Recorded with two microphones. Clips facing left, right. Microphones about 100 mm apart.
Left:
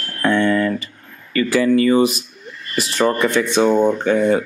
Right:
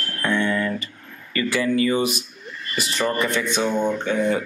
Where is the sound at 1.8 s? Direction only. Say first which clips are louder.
Left 6 dB; 45° left (ahead or behind).